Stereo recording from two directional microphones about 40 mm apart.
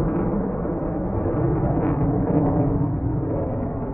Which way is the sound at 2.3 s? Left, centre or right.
Left.